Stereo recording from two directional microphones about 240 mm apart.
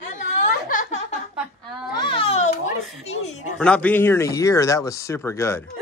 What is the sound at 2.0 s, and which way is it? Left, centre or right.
Baby cry, left.